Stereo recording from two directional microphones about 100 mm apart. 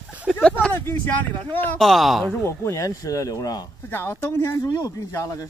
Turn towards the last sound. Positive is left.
turn(degrees=35)  # may be behind; listen again after turning